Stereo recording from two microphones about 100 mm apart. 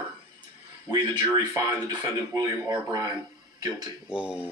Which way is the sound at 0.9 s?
45° right (ahead or behind).